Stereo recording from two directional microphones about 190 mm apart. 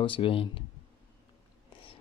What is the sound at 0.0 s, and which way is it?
Speech, 30° left (ahead or behind).